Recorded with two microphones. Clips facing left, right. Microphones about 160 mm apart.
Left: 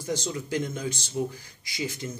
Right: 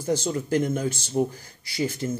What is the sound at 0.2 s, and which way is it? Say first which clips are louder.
Speech: right 6 dB; 50° right (ahead or behind).